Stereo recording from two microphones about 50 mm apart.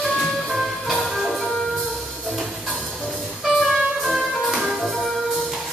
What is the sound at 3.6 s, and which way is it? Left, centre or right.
Music, centre.